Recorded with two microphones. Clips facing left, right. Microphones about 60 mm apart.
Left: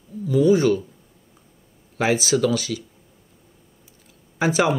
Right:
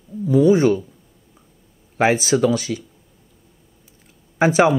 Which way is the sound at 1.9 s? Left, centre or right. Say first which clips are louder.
Right 3 dB; right.